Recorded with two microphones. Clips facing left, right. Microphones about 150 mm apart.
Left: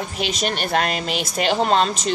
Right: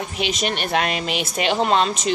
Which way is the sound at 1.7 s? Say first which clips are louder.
Even; 35° left (ahead or behind).